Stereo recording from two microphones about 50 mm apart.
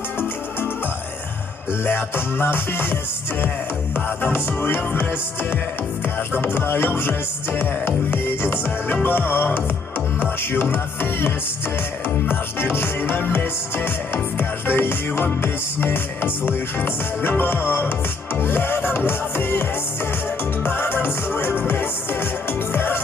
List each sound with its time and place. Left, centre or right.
1.7 s music: left